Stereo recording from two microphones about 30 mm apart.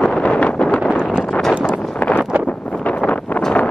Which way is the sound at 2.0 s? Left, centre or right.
Left.